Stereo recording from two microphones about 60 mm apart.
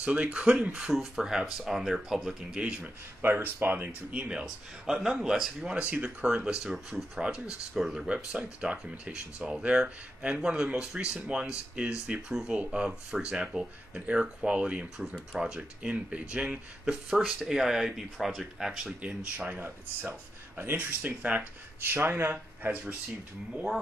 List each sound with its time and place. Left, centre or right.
0.0 s speech: right
3.2 s speech: right
4.1 s speech: centre
5.8 s speech: right
19.0 s speech: right
19.6 s speech: right
21.9 s speech: right
22.3 s speech: right